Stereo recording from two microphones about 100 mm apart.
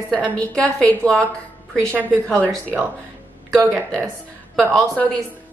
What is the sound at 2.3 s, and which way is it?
Speech, centre (ahead or behind).